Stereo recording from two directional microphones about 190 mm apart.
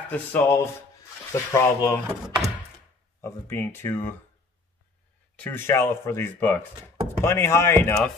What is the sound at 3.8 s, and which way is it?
Speech, 15° left (ahead or behind).